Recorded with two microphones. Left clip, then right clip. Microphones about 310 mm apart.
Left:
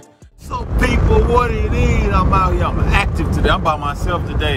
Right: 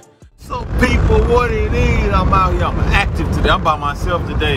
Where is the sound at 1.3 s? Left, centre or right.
Centre.